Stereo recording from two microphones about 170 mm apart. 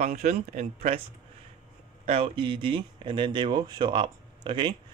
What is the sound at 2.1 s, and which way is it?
Speech, 30° right (ahead or behind).